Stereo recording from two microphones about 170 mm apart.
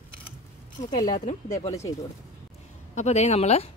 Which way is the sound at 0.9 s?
55° left (ahead or behind).